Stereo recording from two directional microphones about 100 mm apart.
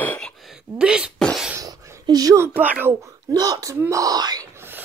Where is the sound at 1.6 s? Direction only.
35° right (ahead or behind).